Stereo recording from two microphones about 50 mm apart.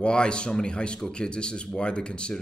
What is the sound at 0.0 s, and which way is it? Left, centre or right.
Speech, centre.